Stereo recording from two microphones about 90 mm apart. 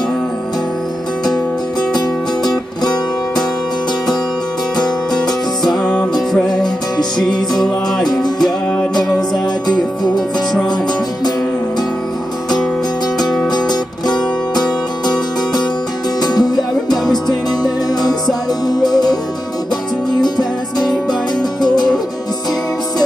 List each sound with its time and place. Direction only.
2.0 s music: 50° left (ahead or behind)
4.7 s music: 50° left (ahead or behind)
5.7 s music: 10° left (ahead or behind)
6.5 s music: 50° left (ahead or behind)
7.2 s music: 5° left (ahead or behind)
14.5 s music: 50° left (ahead or behind)
16.2 s music: 50° left (ahead or behind)
16.9 s music: 5° left (ahead or behind)
17.6 s music: 50° left (ahead or behind)